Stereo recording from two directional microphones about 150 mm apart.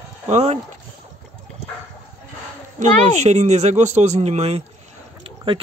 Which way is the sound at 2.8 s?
50° right (ahead or behind).